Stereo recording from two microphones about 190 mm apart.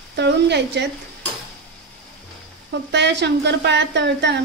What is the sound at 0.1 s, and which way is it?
Speech, 60° right (ahead or behind).